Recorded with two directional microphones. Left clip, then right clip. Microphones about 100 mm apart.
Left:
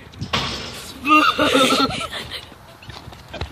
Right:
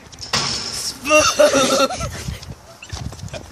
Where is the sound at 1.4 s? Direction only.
40° right (ahead or behind).